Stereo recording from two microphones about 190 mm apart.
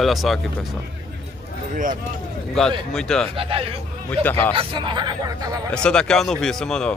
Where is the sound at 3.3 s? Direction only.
30° right (ahead or behind).